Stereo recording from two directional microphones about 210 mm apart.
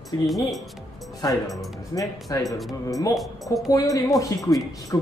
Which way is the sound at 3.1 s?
Centre (ahead or behind).